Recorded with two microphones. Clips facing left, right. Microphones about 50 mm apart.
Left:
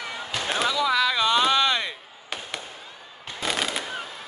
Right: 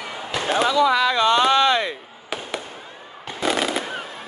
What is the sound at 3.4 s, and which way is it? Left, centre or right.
Fireworks, centre.